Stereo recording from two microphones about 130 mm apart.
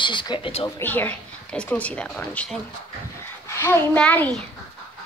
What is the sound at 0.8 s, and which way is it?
A woman's voice, 15° left (ahead or behind).